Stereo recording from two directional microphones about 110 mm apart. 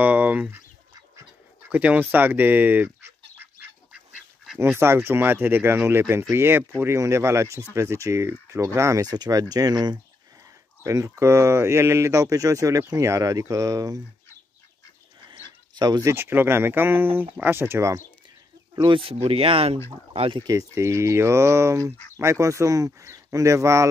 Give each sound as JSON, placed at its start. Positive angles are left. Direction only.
{"t": 0.0, "sound": "a sound", "side_deg": -15}
{"t": 1.7, "sound": "speech", "side_deg": -15}
{"t": 4.6, "sound": "speech", "side_deg": -20}
{"t": 15.7, "sound": "speech", "side_deg": -40}
{"t": 18.8, "sound": "speech", "side_deg": -50}
{"t": 20.5, "sound": "speech", "side_deg": -25}
{"t": 21.9, "sound": "speech", "side_deg": 15}
{"t": 22.2, "sound": "speech", "side_deg": -25}